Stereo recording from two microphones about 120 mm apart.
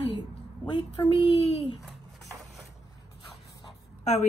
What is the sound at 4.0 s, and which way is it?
Speech, 75° left (ahead or behind).